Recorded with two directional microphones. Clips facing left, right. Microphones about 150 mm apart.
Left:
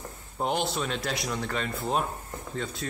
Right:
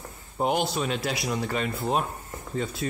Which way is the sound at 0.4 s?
5° right (ahead or behind).